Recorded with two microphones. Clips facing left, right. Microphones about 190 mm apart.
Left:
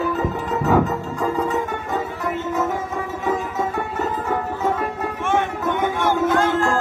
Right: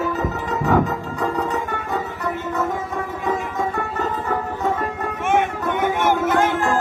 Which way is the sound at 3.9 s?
10° left (ahead or behind).